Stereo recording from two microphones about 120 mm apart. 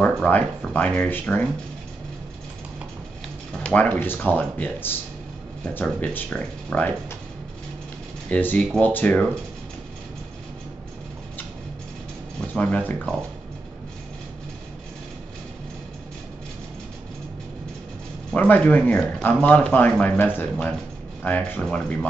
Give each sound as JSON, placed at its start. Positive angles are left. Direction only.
{"t": 0.0, "sound": "speech", "side_deg": 10}
{"t": 3.6, "sound": "speech", "side_deg": 10}
{"t": 8.3, "sound": "speech", "side_deg": 15}
{"t": 12.4, "sound": "speech", "side_deg": 10}
{"t": 18.3, "sound": "speech", "side_deg": 15}